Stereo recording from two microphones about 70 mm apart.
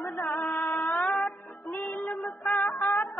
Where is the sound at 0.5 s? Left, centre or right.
Left.